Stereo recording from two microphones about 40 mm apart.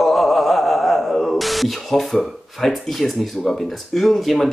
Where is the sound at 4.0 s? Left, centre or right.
Centre.